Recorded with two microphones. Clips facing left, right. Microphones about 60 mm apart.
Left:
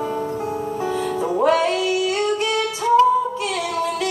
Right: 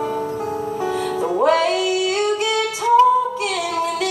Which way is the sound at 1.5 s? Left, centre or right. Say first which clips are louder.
Right 1 dB; right.